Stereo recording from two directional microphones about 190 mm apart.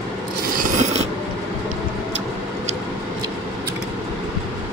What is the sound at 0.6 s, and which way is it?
Filing, 40° right (ahead or behind).